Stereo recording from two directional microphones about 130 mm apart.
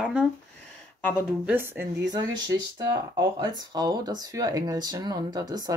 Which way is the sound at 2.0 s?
30° right (ahead or behind).